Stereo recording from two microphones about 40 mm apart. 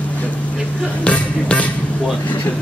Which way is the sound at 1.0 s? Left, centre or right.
Left.